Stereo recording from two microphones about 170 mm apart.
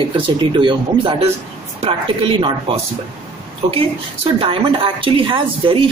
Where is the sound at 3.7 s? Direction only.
30° right (ahead or behind).